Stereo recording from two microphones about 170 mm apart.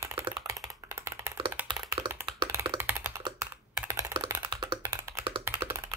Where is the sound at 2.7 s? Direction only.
15° right (ahead or behind).